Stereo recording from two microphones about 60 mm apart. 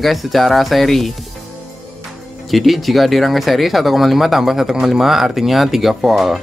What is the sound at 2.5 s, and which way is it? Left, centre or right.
Speech, centre.